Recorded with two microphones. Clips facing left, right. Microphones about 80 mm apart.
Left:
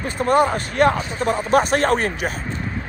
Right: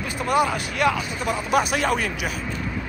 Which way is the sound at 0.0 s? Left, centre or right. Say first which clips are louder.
Left 4 dB; left.